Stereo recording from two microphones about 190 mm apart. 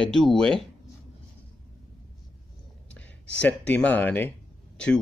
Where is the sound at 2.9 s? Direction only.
5° left (ahead or behind).